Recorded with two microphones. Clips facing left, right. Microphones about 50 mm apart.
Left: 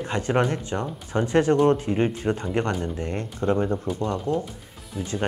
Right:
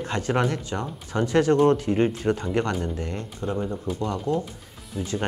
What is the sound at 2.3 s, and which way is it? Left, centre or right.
Speech, left.